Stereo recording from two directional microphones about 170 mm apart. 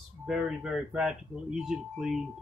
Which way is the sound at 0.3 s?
5° right (ahead or behind).